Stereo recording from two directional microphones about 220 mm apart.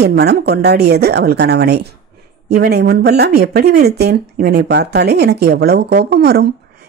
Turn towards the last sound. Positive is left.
turn(degrees=-45)  # may be behind; listen again after turning